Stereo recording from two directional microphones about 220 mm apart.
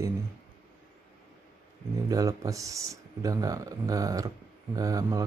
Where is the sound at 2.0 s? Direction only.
15° right (ahead or behind).